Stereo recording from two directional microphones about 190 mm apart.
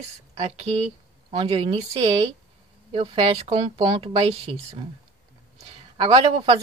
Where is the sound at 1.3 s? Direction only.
30° right (ahead or behind).